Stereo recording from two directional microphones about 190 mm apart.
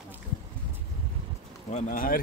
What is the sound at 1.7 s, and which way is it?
Speech, 40° left (ahead or behind).